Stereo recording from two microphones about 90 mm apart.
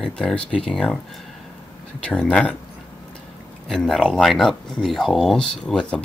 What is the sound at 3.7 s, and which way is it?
Speech, 5° left (ahead or behind).